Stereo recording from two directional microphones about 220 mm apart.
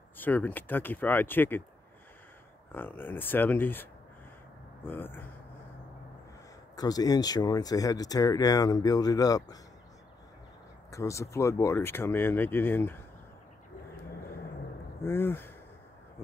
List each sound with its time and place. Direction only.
0.2 s speech: 10° left (ahead or behind)
2.7 s speech: 10° left (ahead or behind)
4.8 s speech: 10° left (ahead or behind)
6.8 s speech: 15° left (ahead or behind)
10.9 s speech: 15° left (ahead or behind)
15.0 s speech: 10° left (ahead or behind)